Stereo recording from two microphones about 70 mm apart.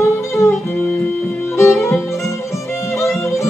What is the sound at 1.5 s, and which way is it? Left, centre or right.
Music, left.